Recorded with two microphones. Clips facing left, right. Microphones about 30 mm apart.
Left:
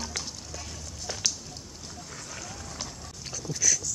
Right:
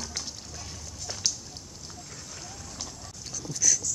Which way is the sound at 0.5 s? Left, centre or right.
Left.